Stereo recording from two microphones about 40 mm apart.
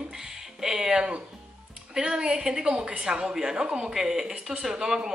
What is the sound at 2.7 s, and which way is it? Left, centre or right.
Speech, right.